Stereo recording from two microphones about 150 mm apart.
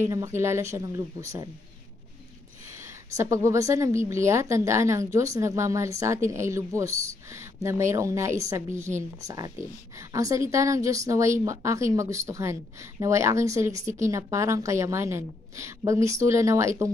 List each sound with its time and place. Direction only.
0.0 s a woman's voice: 20° right (ahead or behind)
2.8 s a woman's voice: 20° right (ahead or behind)
9.9 s a woman's voice: 20° right (ahead or behind)